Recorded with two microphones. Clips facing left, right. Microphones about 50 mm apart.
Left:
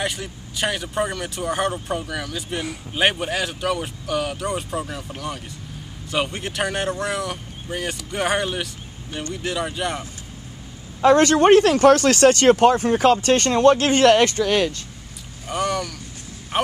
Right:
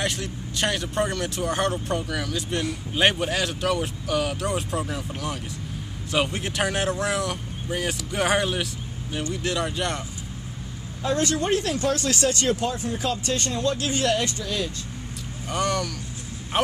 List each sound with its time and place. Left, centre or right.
0.0 s speech: centre
11.0 s speech: left
15.4 s speech: centre